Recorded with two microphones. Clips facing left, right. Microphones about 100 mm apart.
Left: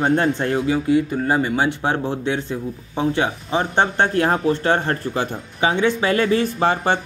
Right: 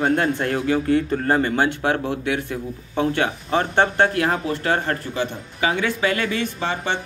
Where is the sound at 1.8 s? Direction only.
25° left (ahead or behind).